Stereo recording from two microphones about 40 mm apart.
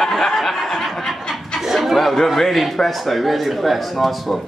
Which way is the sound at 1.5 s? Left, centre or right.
Centre.